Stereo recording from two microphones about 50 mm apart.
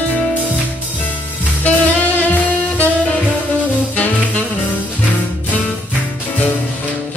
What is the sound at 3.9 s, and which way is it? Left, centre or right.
Music, left.